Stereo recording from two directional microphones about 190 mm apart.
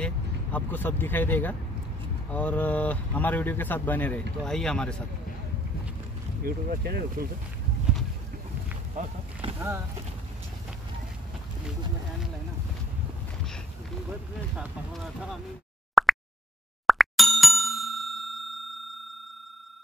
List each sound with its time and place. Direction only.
0.0 s speech: 10° left (ahead or behind)
6.4 s speech: 55° right (ahead or behind)
8.9 s roaring cats: 30° right (ahead or behind)
14.6 s speech: 5° right (ahead or behind)
15.9 s plop: centre (ahead or behind)
16.8 s ding: centre (ahead or behind)